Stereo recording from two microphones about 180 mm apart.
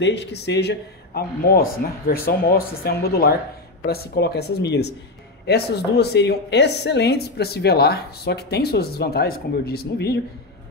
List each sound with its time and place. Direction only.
0.0 s speech: 70° left (ahead or behind)